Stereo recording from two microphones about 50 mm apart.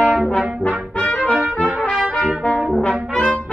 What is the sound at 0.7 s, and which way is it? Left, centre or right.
Brass instrument, centre.